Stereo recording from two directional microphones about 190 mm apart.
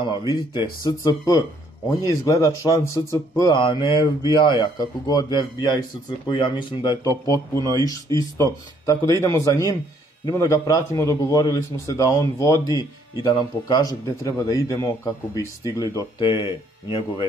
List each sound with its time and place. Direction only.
0.8 s a man's voice: 20° left (ahead or behind)